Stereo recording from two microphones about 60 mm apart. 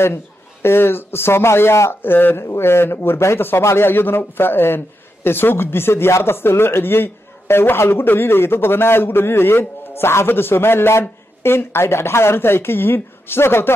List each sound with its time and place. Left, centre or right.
0.0 s speech: left
2.4 s speech: left